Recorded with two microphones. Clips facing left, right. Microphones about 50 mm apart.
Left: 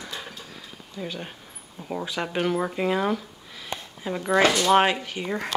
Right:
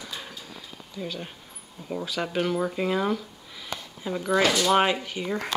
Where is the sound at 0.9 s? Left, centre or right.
Centre.